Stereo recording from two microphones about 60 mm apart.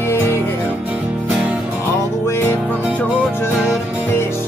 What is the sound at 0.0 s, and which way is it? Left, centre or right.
Music, left.